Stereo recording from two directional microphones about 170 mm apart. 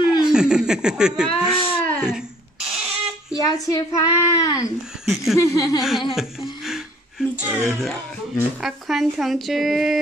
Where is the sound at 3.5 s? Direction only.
20° left (ahead or behind).